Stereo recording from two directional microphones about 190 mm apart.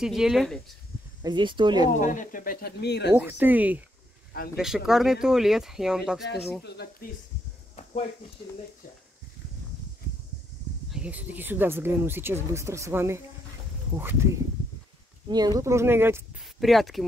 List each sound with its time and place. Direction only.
0.0 s speech: centre (ahead or behind)
1.2 s speech: 25° right (ahead or behind)
2.0 s speech: 45° left (ahead or behind); by 3.1 s 60° left (ahead or behind)
3.1 s speech: 10° right (ahead or behind)
6.6 s speech: 55° left (ahead or behind)
10.9 s speech: 5° right (ahead or behind)
16.5 s speech: centre (ahead or behind)